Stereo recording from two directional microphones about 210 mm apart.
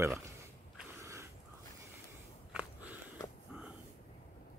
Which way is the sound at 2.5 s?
5° right (ahead or behind).